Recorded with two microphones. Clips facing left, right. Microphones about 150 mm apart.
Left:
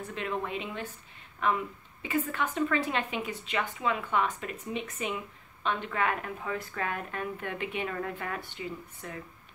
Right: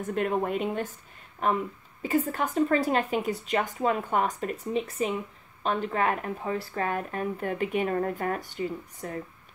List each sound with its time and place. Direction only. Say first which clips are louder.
0.0 s speech: right 7 dB; 50° right (ahead or behind)